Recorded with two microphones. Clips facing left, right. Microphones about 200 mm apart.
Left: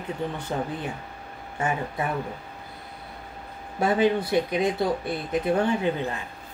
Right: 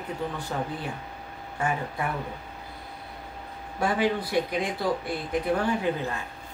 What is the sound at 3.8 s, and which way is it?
Speech, 25° left (ahead or behind).